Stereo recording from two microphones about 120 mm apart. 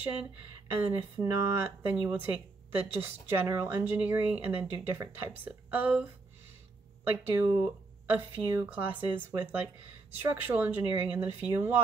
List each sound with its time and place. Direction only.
0.0 s speech: 15° right (ahead or behind)
7.2 s speech: 20° right (ahead or behind)